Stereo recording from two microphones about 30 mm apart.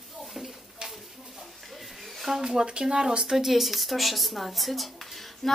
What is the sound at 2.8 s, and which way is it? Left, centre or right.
Speech, right.